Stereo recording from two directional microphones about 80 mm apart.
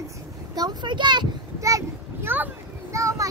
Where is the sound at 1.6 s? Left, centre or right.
Right.